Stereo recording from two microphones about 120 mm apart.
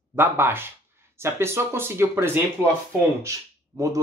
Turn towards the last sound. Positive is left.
turn(degrees=-25)  # may be behind; listen again after turning